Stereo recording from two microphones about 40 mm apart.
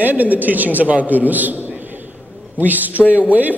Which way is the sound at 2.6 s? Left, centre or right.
Right.